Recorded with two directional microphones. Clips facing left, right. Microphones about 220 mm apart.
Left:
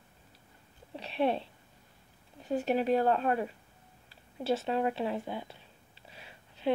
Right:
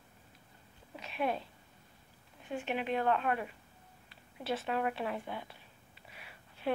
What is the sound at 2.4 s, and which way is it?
A woman's voice, 40° left (ahead or behind).